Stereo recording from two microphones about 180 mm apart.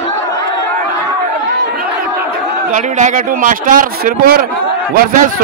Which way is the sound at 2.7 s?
45° right (ahead or behind).